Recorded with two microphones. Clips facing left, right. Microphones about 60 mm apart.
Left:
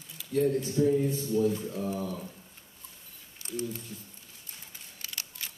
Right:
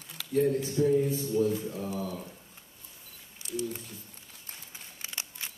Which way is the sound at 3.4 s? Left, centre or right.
Left.